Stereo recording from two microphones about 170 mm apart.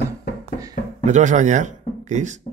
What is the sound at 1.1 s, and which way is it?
Speech, 45° right (ahead or behind).